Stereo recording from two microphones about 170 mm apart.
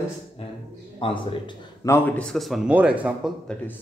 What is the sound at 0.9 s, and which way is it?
Speech, 30° left (ahead or behind).